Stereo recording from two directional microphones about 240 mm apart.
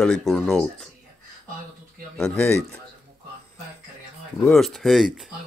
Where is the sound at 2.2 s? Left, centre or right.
Centre.